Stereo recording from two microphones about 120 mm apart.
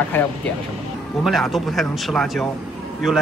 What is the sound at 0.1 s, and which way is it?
Speech, 15° left (ahead or behind).